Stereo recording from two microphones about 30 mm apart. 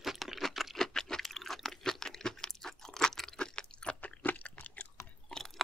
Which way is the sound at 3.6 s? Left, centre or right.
Left.